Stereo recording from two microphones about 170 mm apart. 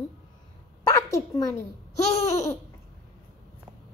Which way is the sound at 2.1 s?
15° left (ahead or behind).